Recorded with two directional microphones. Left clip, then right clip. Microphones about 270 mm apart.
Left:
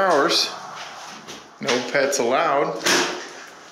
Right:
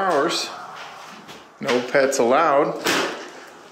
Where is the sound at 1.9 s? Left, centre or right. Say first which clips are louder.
Right 4 dB; centre.